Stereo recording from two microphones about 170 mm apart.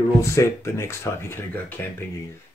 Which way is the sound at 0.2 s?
15° left (ahead or behind).